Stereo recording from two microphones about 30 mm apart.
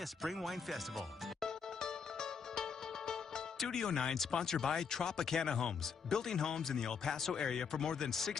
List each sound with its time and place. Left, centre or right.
0.2 s speech: centre
1.4 s music: left
3.5 s speech: centre
8.1 s speech: centre